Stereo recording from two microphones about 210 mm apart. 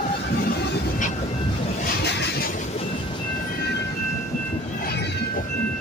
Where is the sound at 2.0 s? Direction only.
55° left (ahead or behind); by 3.0 s 30° left (ahead or behind).